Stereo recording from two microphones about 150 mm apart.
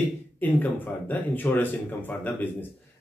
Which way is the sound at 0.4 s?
10° left (ahead or behind).